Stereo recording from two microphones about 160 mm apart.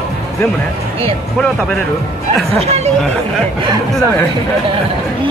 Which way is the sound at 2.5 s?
40° right (ahead or behind).